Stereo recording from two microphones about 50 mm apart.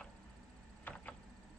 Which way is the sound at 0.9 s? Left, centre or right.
Left.